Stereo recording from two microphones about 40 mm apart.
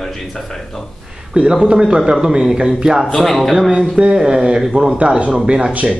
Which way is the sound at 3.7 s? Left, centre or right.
Centre.